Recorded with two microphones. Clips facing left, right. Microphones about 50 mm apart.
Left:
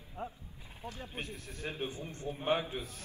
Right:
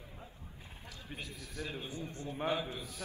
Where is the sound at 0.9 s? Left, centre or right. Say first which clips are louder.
Left 5 dB; left.